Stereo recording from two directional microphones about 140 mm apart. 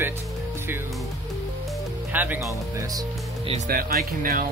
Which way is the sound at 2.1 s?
15° right (ahead or behind).